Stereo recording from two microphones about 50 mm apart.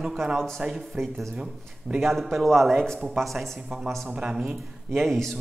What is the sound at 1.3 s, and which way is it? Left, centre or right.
Speech, right.